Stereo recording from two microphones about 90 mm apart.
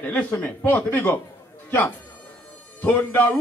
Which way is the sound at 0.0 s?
20° left (ahead or behind).